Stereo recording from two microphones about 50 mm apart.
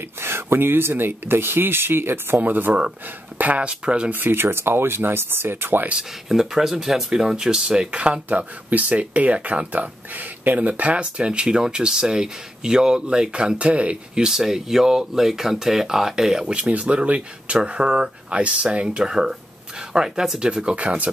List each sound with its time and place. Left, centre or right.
0.2 s speech: right
4.1 s speech: right
6.2 s speech: centre; by 13.9 s right
14.1 s speech: centre
16.4 s speech: right